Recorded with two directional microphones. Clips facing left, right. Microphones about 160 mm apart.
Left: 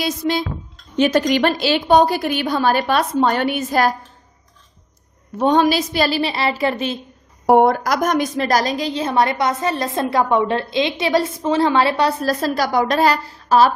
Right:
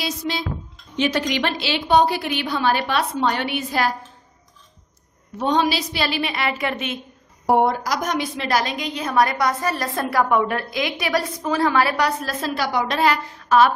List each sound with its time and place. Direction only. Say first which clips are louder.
0.0 s a woman's voice: left 6 dB; 50° left (ahead or behind)
5.4 s a woman's voice: left 5 dB; 50° left (ahead or behind); by 7.0 s 35° left (ahead or behind)
7.4 s a woman's voice: left 5 dB; 60° left (ahead or behind); by 13.7 s 35° left (ahead or behind)